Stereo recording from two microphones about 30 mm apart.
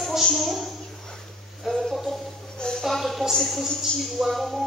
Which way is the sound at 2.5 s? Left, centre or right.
Left.